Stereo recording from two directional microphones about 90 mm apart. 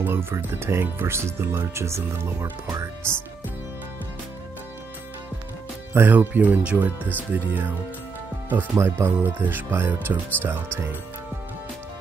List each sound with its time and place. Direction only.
0.0 s speech: 25° right (ahead or behind)
5.9 s speech: 20° right (ahead or behind)
8.7 s speech: 25° right (ahead or behind)